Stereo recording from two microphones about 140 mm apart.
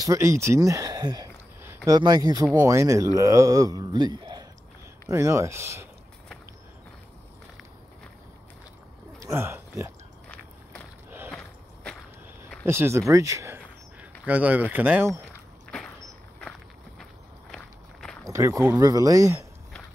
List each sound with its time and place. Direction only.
0.0 s speech: 20° right (ahead or behind)
9.2 s speech: 20° right (ahead or behind)
10.2 s vehicle: 10° left (ahead or behind)
11.1 s a sound: 15° right (ahead or behind)
11.3 s walk: 5° left (ahead or behind)
12.6 s speech: 20° right (ahead or behind)
14.2 s speech: 10° right (ahead or behind)
15.7 s a sound: 5° left (ahead or behind)
18.2 s speech: 20° right (ahead or behind)